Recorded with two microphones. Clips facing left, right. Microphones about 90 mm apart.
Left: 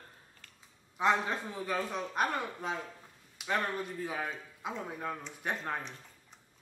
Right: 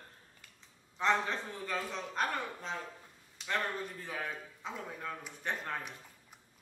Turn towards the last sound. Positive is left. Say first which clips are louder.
# left 2 dB
turn(degrees=15)  # may be behind; listen again after turning